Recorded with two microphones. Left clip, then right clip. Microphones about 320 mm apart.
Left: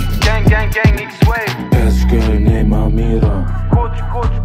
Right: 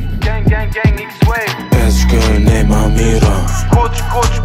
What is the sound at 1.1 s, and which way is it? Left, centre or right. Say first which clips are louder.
Music: right 4 dB; centre.